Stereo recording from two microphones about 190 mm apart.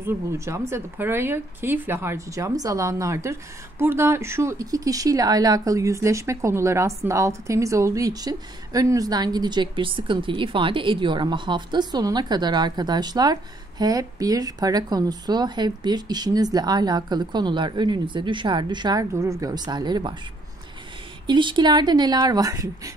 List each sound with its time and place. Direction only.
0.0 s speech: 15° right (ahead or behind)
21.3 s speech: 25° right (ahead or behind)